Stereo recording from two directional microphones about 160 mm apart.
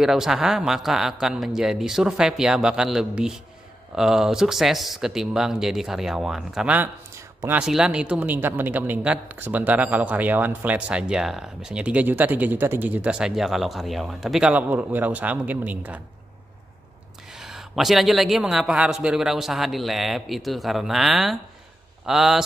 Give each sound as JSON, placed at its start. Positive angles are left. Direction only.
{"t": 0.0, "sound": "a man's voice", "side_deg": -5}
{"t": 17.3, "sound": "a man's voice", "side_deg": -5}